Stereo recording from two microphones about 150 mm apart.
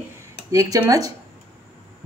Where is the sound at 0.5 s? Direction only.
25° right (ahead or behind).